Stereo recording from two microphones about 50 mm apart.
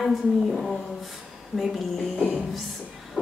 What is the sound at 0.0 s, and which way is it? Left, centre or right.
Speech, centre.